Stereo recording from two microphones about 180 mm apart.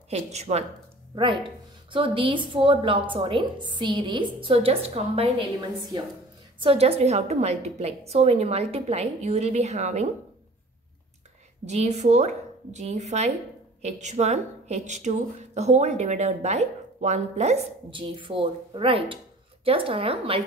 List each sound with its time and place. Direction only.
0.1 s a woman's voice: 35° right (ahead or behind)
1.1 s speech: 25° right (ahead or behind)
6.6 s a woman's voice: 30° right (ahead or behind)
11.6 s a woman's voice: 40° right (ahead or behind)